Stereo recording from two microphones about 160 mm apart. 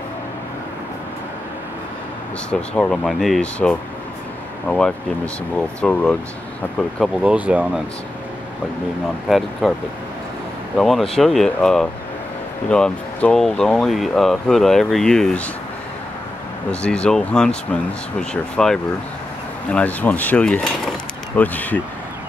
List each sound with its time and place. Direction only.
2.7 s speech: 5° left (ahead or behind)
7.0 s speech: 5° right (ahead or behind)
9.3 s speech: centre (ahead or behind)
10.8 s speech: centre (ahead or behind)
16.8 s speech: 5° left (ahead or behind)